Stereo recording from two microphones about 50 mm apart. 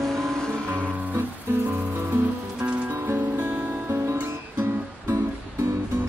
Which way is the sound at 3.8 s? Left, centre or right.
Right.